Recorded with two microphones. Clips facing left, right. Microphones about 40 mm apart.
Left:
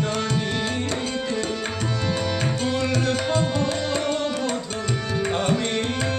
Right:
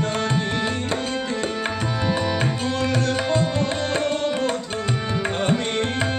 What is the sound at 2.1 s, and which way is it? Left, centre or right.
Music, centre.